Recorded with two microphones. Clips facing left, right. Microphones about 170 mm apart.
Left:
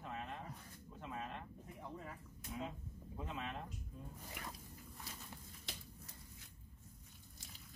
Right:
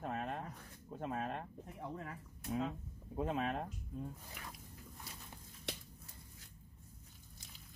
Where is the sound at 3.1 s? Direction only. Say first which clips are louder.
Right 9 dB; 50° right (ahead or behind).